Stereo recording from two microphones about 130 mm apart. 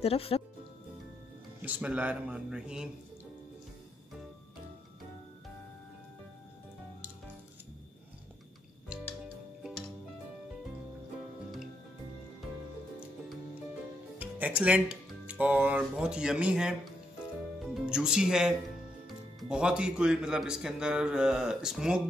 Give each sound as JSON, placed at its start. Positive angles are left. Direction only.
{"t": 0.0, "sound": "speech", "side_deg": 50}
{"t": 1.6, "sound": "speech", "side_deg": -10}
{"t": 8.8, "sound": "music", "side_deg": -10}
{"t": 14.1, "sound": "speech", "side_deg": -10}
{"t": 17.7, "sound": "speech", "side_deg": -5}